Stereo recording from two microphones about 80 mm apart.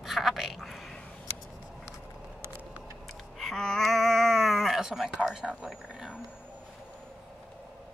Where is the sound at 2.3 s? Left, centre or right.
Right.